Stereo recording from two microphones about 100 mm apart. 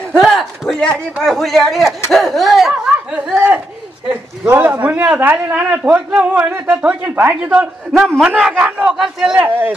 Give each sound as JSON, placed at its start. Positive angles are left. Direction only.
{"t": 0.2, "sound": "a sound", "side_deg": 0}
{"t": 1.2, "sound": "a man's voice", "side_deg": 0}
{"t": 8.2, "sound": "a man's voice", "side_deg": -10}
{"t": 9.4, "sound": "a man's voice", "side_deg": -20}